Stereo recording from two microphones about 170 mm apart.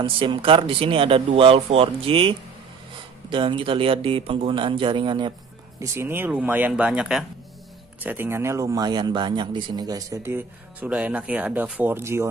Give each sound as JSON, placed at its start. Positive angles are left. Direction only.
{"t": 0.0, "sound": "speech", "side_deg": -30}
{"t": 5.8, "sound": "speech", "side_deg": -15}